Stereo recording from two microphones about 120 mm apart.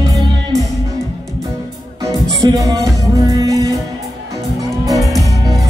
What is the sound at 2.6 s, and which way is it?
Music, 30° right (ahead or behind).